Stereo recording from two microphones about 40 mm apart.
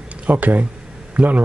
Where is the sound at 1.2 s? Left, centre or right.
Right.